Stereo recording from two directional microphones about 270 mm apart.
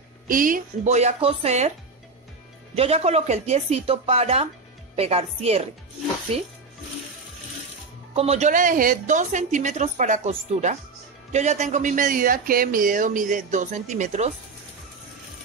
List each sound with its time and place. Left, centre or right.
0.3 s speech: right
2.7 s speech: right
8.1 s speech: right